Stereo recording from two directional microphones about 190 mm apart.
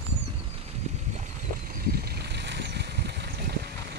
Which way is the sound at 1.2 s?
50° right (ahead or behind).